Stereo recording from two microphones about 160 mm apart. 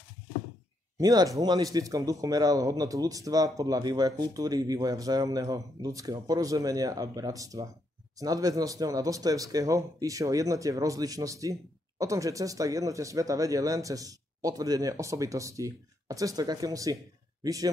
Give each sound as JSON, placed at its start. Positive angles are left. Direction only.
{"t": 0.9, "sound": "speech", "side_deg": -20}